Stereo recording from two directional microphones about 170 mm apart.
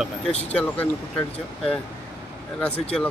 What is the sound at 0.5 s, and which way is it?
Speech, 5° left (ahead or behind).